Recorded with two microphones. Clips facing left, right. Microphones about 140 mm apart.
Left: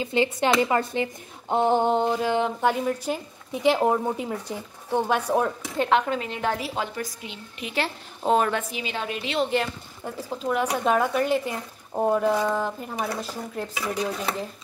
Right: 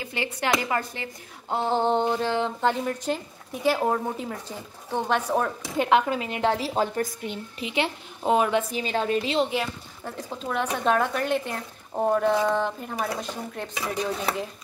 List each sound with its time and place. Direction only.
0.0 s speech: 20° left (ahead or behind)
5.8 s speech: 10° right (ahead or behind)
6.6 s a woman's voice: 40° right (ahead or behind)
7.0 s a woman's voice: 50° right (ahead or behind)
7.5 s a woman's voice: 20° right (ahead or behind)
8.2 s speech: 10° right (ahead or behind)
8.7 s a woman's voice: 40° right (ahead or behind)
10.0 s speech: 5° left (ahead or behind)